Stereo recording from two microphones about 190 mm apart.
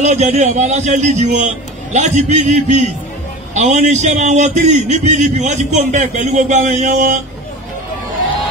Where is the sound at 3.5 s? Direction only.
35° right (ahead or behind).